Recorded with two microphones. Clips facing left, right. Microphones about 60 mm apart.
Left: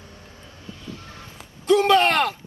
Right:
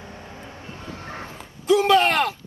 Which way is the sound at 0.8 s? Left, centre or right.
Right.